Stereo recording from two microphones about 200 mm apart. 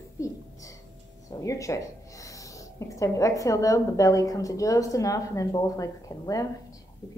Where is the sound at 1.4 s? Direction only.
15° left (ahead or behind).